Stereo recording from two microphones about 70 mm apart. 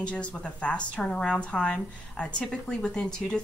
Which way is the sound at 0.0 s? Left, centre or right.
Centre.